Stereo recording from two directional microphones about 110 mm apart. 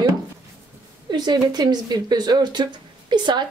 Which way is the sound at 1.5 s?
40° right (ahead or behind).